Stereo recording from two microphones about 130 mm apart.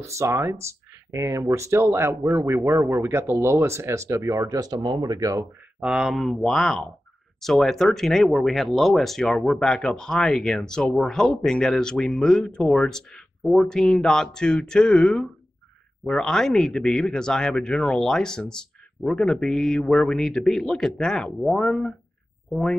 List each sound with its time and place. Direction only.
0.0 s speech: 25° right (ahead or behind)
5.8 s speech: 5° right (ahead or behind)